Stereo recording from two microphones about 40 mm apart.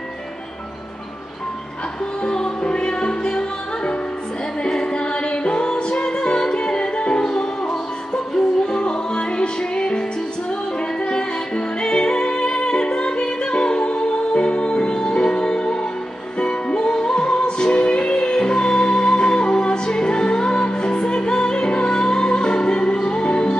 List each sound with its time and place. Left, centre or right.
2.2 s music: left
11.1 s music: left